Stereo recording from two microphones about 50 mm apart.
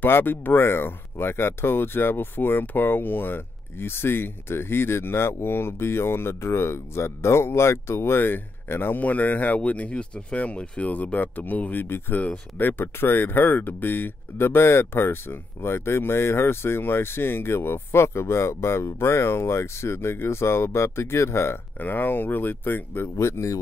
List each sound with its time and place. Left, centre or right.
0.0 s speech: left
9.0 s speech: left
21.7 s speech: left
23.1 s speech: left